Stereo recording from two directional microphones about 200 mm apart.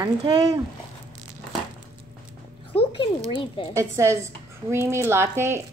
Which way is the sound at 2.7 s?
25° left (ahead or behind).